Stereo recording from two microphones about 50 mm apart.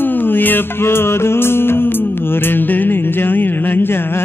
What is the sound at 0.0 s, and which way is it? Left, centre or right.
Music, left.